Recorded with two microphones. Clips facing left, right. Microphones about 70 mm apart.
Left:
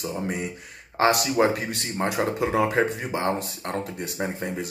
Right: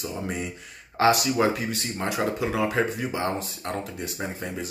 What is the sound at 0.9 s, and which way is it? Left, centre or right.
Speech, left.